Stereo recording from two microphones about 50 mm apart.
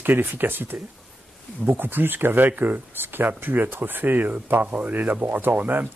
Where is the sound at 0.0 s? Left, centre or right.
Right.